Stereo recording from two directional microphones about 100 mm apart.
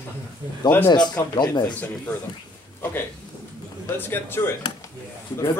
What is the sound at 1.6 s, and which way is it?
Speech, 20° left (ahead or behind).